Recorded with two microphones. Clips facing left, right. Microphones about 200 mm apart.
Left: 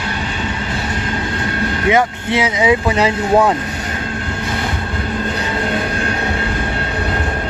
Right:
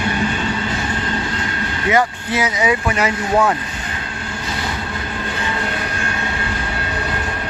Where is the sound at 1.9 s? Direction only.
25° left (ahead or behind).